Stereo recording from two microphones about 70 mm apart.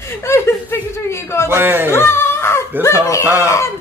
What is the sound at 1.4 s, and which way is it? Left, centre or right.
Speech, right.